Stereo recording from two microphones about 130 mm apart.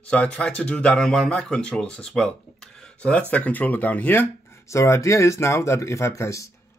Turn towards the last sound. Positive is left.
turn(degrees=20)  # may be behind; listen again after turning